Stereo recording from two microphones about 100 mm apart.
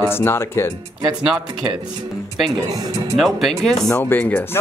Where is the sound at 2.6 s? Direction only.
35° right (ahead or behind).